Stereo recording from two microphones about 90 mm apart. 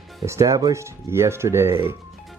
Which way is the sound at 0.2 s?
35° right (ahead or behind).